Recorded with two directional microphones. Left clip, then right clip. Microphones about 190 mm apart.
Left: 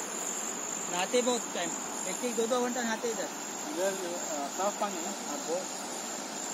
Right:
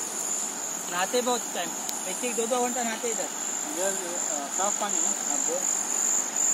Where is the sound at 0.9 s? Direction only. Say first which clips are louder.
Right 3 dB; 40° right (ahead or behind).